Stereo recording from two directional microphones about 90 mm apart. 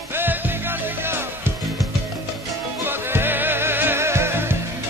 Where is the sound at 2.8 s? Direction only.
25° right (ahead or behind).